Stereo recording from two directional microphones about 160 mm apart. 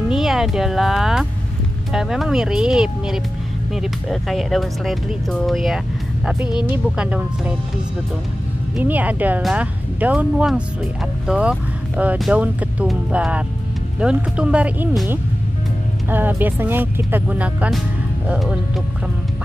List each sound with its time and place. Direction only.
0.1 s speech: centre (ahead or behind)
8.7 s speech: 10° right (ahead or behind)